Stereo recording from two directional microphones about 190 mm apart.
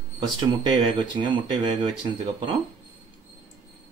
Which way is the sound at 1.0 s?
25° right (ahead or behind).